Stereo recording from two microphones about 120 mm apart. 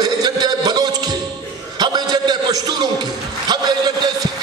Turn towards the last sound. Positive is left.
turn(degrees=-35)  # may be behind; listen again after turning